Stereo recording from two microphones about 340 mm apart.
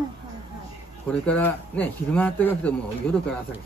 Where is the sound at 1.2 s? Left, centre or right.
Centre.